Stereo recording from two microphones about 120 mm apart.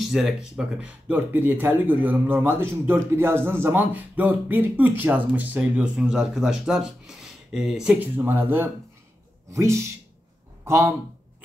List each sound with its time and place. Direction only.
0.0 s speech: centre (ahead or behind)
8.0 s a man's voice: 15° right (ahead or behind)